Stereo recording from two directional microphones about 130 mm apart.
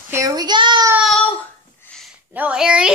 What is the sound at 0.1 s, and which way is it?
Speech, 25° right (ahead or behind).